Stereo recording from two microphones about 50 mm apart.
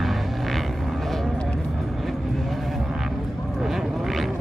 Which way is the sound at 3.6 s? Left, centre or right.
Centre.